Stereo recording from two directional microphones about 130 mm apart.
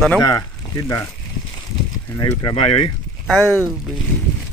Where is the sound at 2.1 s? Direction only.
45° left (ahead or behind).